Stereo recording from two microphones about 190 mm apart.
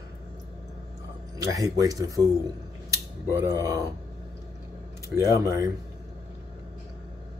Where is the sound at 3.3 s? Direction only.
15° right (ahead or behind).